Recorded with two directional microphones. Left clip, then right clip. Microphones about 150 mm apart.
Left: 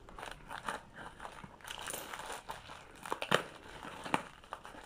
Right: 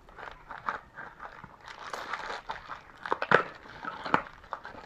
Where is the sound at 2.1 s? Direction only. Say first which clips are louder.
Right 7 dB; 10° left (ahead or behind).